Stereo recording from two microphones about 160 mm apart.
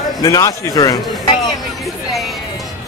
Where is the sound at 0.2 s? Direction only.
20° left (ahead or behind).